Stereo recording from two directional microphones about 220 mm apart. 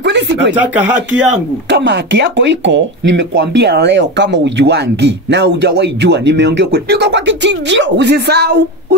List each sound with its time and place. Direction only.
0.0 s speech: 55° right (ahead or behind)
0.6 s speech: 5° right (ahead or behind)
1.7 s speech: 55° right (ahead or behind)